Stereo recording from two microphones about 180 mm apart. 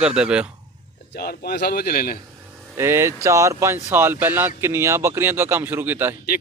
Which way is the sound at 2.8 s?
15° right (ahead or behind).